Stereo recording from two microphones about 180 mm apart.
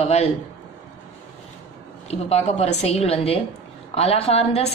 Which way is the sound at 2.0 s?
35° left (ahead or behind).